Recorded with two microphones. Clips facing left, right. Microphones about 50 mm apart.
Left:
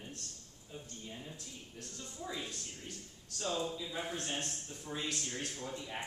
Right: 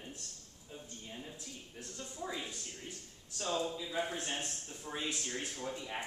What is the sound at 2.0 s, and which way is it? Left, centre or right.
Speech, centre.